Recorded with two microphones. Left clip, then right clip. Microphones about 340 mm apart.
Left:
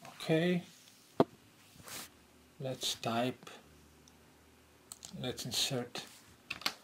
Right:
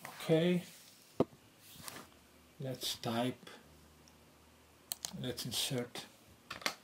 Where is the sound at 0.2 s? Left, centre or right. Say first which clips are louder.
Even; centre.